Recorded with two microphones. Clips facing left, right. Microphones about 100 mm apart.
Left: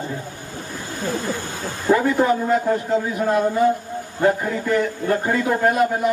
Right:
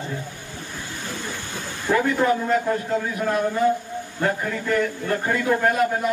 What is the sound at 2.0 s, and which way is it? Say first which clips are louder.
A man's voice: right 2 dB; 25° left (ahead or behind).